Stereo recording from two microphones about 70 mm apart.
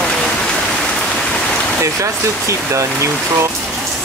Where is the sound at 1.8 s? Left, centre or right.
Right.